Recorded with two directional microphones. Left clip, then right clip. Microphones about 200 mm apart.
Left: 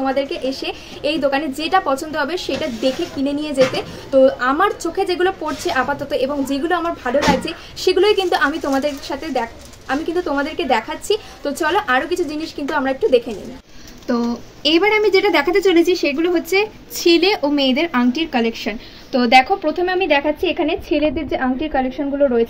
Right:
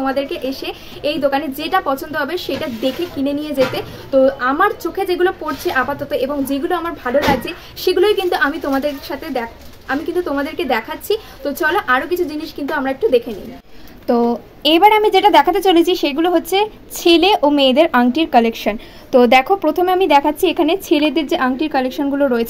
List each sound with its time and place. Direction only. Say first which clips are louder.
0.0 s a woman's voice: even; centre (ahead or behind)
14.6 s a woman's voice: right 4 dB; 35° right (ahead or behind)
17.0 s a woman's voice: right 3 dB; 25° right (ahead or behind)